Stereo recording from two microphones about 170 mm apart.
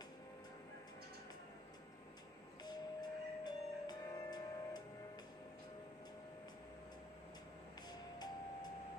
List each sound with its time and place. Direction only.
2.6 s music: 25° left (ahead or behind)